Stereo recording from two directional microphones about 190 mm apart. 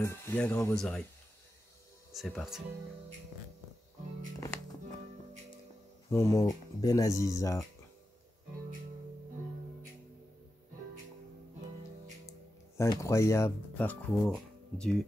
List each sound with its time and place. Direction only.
0.0 s speech: 10° left (ahead or behind)
2.1 s speech: centre (ahead or behind)
6.0 s speech: 15° left (ahead or behind)
12.7 s speech: 15° left (ahead or behind)